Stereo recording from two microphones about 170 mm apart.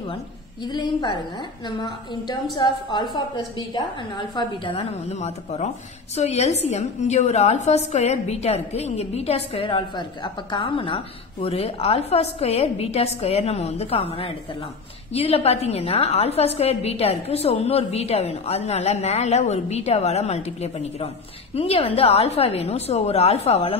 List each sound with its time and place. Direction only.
0.7 s a woman's voice: 25° left (ahead or behind)
2.5 s a woman's voice: 25° left (ahead or behind)
4.4 s a woman's voice: 30° left (ahead or behind)